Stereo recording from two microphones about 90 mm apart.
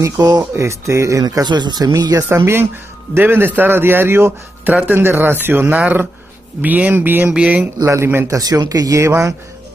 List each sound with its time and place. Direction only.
0.0 s speech: 45° right (ahead or behind)
0.4 s speech: 30° right (ahead or behind)
2.2 s a man's voice: 30° right (ahead or behind)
7.8 s speech: 30° right (ahead or behind)
8.4 s speech: 45° right (ahead or behind)